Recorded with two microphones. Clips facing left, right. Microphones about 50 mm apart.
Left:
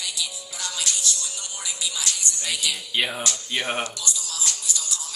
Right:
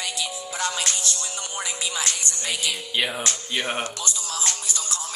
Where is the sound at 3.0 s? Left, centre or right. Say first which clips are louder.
Even; centre.